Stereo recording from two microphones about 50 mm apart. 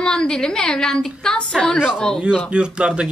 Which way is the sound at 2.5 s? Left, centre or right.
Right.